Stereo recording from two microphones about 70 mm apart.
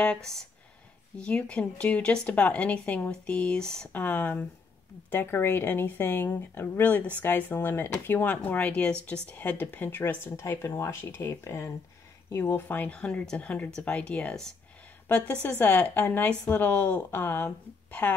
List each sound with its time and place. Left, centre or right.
0.0 s a woman's voice: centre
3.9 s speech: left
5.1 s a woman's voice: left; by 14.5 s centre
15.0 s a woman's voice: left